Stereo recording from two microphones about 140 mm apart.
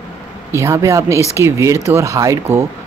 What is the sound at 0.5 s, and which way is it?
Speech, 20° right (ahead or behind).